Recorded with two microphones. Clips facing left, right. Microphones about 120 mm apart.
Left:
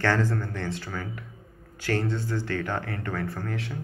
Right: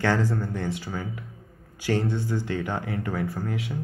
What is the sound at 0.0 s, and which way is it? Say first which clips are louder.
Speech: right 1 dB; 15° right (ahead or behind).